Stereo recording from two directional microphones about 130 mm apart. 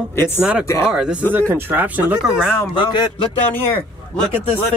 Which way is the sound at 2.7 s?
35° left (ahead or behind).